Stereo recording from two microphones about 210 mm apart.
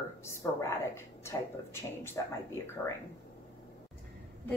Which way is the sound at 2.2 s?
15° left (ahead or behind).